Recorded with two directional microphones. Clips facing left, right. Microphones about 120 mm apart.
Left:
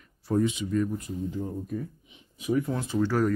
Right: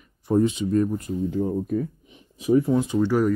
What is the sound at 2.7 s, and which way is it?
Speech, 15° right (ahead or behind).